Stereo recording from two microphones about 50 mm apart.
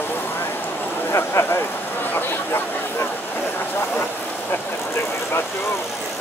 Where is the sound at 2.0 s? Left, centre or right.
Left.